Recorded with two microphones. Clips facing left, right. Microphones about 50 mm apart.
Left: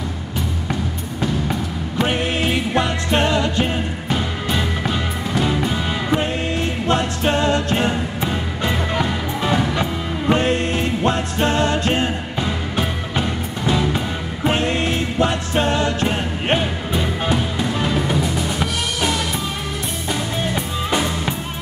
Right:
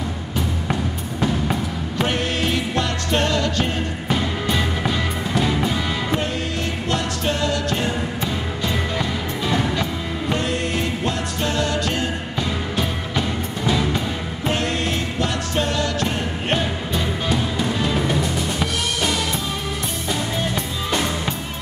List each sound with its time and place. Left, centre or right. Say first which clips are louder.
1.2 s music: even; centre
2.0 s music: left 2 dB; centre
4.1 s music: right 1 dB; centre
6.6 s music: left 5 dB; left
13.7 s music: left 2 dB; centre
14.5 s music: left 2 dB; left
17.9 s music: left 1 dB; centre